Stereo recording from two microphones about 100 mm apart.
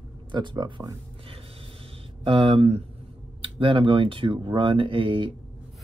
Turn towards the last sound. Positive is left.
turn(degrees=-60)  # may be behind; listen again after turning